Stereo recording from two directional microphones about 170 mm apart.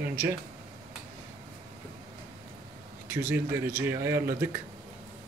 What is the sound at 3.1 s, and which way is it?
A man's voice, 10° right (ahead or behind).